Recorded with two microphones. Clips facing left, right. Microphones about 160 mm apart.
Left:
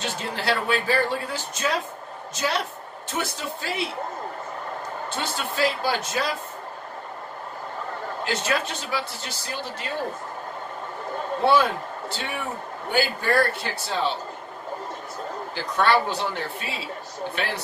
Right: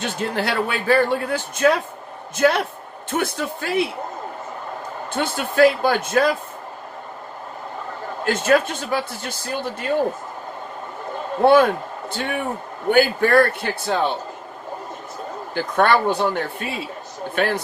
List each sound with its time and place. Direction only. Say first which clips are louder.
0.0 s speech: right 5 dB; 55° right (ahead or behind)
5.1 s speech: right 9 dB; 55° right (ahead or behind)
8.3 s speech: right 9 dB; 50° right (ahead or behind)
11.4 s speech: right 7 dB; 55° right (ahead or behind)
15.5 s speech: right 4 dB; 50° right (ahead or behind)